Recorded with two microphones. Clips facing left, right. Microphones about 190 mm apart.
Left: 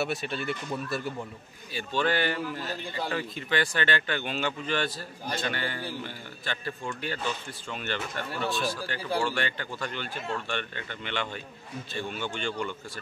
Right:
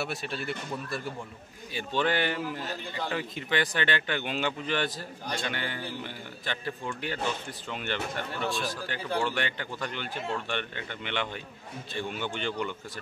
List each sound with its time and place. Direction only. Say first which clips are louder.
0.0 s speech: left 3 dB; centre (ahead or behind)
1.7 s speech: even; 20° right (ahead or behind)
5.2 s speech: left 2 dB; 5° left (ahead or behind)
5.5 s speech: left 2 dB; 15° right (ahead or behind)
8.5 s speech: left 3 dB; centre (ahead or behind)
9.2 s speech: left 1 dB; 15° right (ahead or behind)